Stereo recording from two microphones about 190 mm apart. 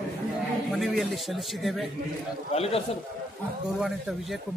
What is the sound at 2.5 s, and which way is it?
Speech, 35° left (ahead or behind).